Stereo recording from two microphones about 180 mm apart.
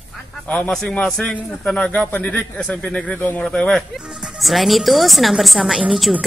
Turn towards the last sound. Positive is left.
turn(degrees=0)  # may be behind; listen again after turning